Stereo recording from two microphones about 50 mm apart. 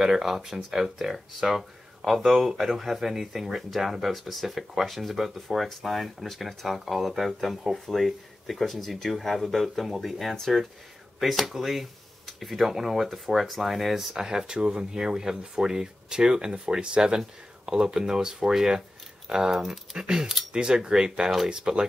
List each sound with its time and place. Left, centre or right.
0.0 s speech: centre